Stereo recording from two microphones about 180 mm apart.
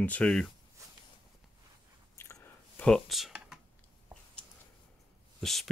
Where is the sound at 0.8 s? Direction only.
15° right (ahead or behind).